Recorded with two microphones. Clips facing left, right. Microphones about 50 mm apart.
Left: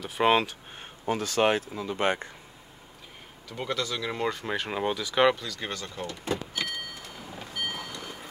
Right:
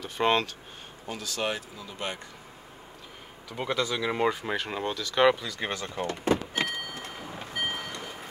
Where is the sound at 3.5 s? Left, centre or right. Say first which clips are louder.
Right 2 dB; centre.